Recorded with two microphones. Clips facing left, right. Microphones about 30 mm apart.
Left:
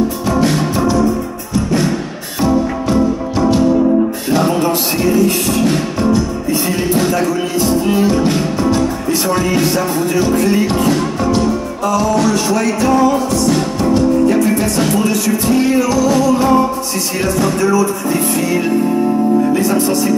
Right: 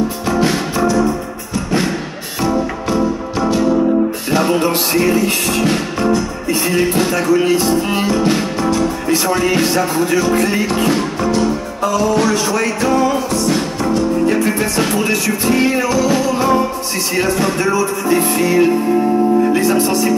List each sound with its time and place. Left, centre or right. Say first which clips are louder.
4.3 s music: even; right
10.0 s music: left 1 dB; right
12.2 s a sound: left 1 dB; right
14.2 s music: left 2 dB; right
18.1 s music: right 5 dB; right
19.6 s music: even; right